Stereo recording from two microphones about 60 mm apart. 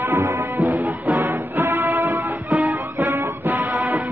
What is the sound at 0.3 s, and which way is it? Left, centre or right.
Music, right.